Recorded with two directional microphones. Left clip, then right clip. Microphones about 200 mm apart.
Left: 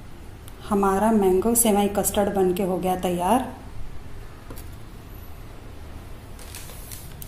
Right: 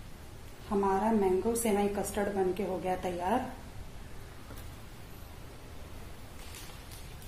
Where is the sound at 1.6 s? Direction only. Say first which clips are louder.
Left 9 dB; 35° left (ahead or behind).